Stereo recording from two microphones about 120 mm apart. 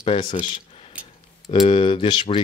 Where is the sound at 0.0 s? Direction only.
45° left (ahead or behind).